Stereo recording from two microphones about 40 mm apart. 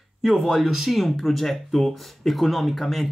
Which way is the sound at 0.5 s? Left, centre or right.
Centre.